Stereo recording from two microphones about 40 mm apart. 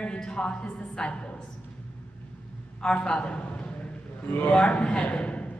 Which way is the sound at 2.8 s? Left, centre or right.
Left.